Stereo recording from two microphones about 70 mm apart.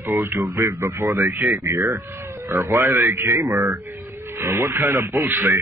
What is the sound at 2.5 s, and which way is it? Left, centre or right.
A man's voice, right.